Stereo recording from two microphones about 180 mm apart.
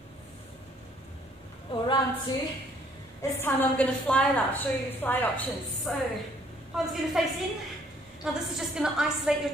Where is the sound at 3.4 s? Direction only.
10° left (ahead or behind).